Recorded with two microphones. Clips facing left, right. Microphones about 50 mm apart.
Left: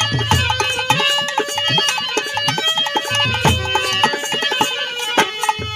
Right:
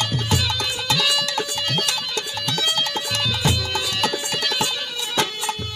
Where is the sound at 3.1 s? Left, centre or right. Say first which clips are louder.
Left 5 dB; left.